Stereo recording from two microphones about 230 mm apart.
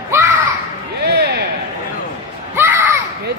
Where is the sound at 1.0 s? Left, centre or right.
Right.